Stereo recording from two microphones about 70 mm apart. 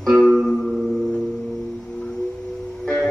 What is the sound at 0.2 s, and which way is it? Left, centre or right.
Music, centre.